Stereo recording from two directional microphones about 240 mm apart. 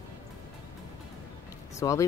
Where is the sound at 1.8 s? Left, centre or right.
Centre.